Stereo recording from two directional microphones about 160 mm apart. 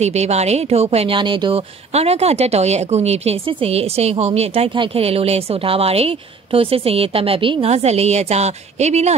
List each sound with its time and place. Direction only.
0.0 s speech: 45° right (ahead or behind)